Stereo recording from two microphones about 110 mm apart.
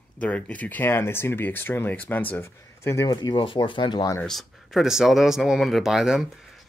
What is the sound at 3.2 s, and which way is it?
Speech, 45° left (ahead or behind).